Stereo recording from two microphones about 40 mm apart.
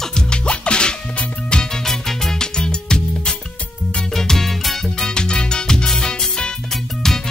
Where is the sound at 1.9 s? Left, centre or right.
Centre.